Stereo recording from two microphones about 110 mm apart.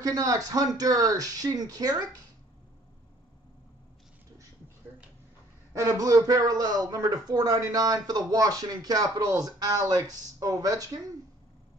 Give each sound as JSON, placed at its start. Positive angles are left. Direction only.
{"t": 0.0, "sound": "speech", "side_deg": -30}
{"t": 5.7, "sound": "speech", "side_deg": -30}